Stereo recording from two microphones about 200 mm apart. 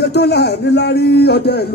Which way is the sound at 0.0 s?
55° left (ahead or behind).